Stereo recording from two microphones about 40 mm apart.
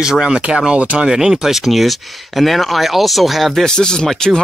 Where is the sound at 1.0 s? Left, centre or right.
Centre.